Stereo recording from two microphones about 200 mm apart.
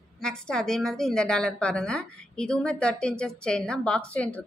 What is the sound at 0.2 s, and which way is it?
A woman's voice, 5° left (ahead or behind).